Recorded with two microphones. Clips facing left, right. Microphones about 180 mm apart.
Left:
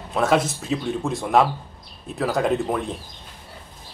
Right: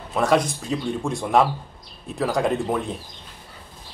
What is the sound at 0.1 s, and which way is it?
Speech, centre (ahead or behind).